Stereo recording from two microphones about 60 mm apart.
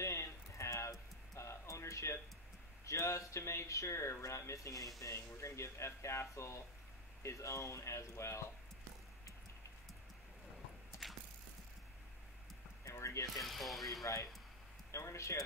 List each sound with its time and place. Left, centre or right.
0.0 s a sound: left
2.8 s speech: left
5.0 s speech: left
10.9 s mechanisms: left
12.8 s music: left
13.4 s speech: centre
14.9 s speech: left